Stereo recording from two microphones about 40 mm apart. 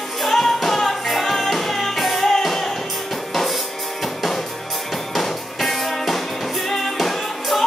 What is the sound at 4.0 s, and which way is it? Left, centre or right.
Music, centre.